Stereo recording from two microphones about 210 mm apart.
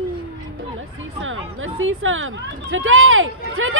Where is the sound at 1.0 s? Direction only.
70° right (ahead or behind).